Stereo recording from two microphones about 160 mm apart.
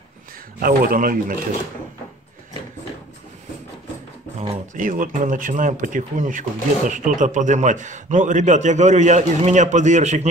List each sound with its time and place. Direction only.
0.6 s speech: 65° right (ahead or behind)
4.7 s a man's voice: 55° right (ahead or behind)